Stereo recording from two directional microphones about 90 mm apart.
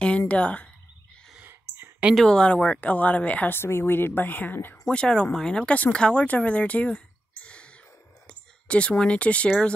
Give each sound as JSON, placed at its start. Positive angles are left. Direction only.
{"t": 0.3, "sound": "speech", "side_deg": 15}
{"t": 1.5, "sound": "a sound", "side_deg": -25}
{"t": 2.1, "sound": "speech", "side_deg": 10}
{"t": 4.8, "sound": "speech", "side_deg": 10}